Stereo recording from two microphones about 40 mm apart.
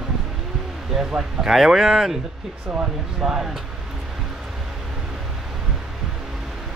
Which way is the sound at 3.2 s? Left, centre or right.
Centre.